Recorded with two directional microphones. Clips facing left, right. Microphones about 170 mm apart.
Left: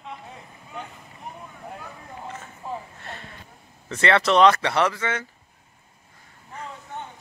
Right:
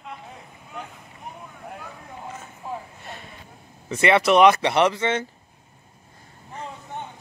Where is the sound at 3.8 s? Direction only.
10° right (ahead or behind).